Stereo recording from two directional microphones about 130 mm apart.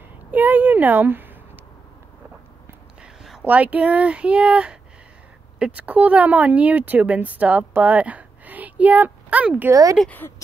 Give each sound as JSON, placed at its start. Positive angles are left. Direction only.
{"t": 0.3, "sound": "speech", "side_deg": -15}
{"t": 3.0, "sound": "speech", "side_deg": -10}
{"t": 9.7, "sound": "speech", "side_deg": -25}
{"t": 10.0, "sound": "speech", "side_deg": 15}